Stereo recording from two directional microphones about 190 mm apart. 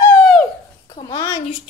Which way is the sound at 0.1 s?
5° left (ahead or behind).